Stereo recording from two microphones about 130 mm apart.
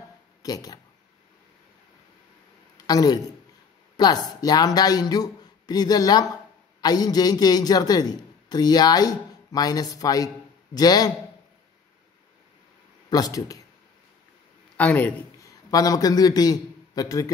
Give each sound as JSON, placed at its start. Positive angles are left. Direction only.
{"t": 0.4, "sound": "speech", "side_deg": 30}
{"t": 2.8, "sound": "a man's voice", "side_deg": 30}
{"t": 13.1, "sound": "speech", "side_deg": 30}
{"t": 14.8, "sound": "a man's voice", "side_deg": 10}
{"t": 15.4, "sound": "a man's voice", "side_deg": 30}